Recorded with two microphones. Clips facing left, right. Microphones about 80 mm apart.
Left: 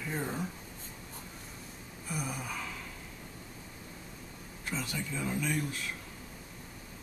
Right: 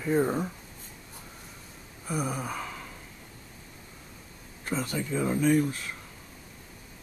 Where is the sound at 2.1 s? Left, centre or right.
Right.